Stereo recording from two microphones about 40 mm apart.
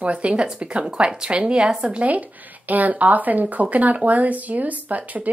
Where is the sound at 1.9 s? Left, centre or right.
Right.